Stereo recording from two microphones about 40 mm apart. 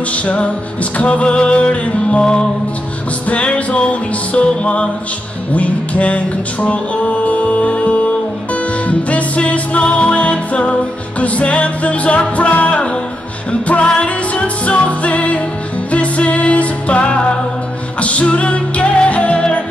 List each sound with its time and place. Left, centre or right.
0.1 s music: left
3.3 s music: left